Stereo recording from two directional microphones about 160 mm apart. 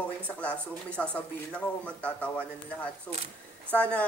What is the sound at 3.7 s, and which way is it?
Speech, 10° left (ahead or behind).